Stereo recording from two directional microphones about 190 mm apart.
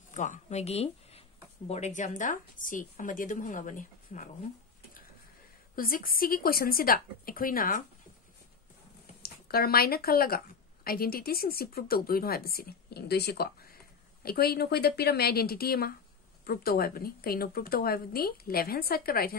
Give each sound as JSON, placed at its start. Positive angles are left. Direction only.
{"t": 0.1, "sound": "a woman's voice", "side_deg": 40}
{"t": 5.8, "sound": "a woman's voice", "side_deg": 50}
{"t": 9.2, "sound": "a woman's voice", "side_deg": 55}